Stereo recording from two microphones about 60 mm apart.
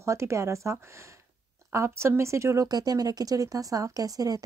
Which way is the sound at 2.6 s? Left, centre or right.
Right.